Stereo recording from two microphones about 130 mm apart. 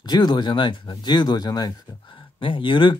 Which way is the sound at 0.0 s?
35° left (ahead or behind).